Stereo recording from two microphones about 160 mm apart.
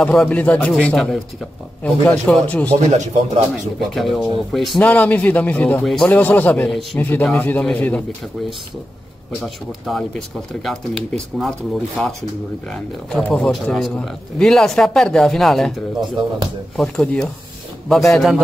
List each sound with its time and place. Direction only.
0.0 s speech: 5° left (ahead or behind)
2.8 s speech: 45° right (ahead or behind)
3.9 s speech: centre (ahead or behind)
7.0 s speech: 10° left (ahead or behind)
9.8 s speech: centre (ahead or behind)
16.7 s speech: 5° left (ahead or behind)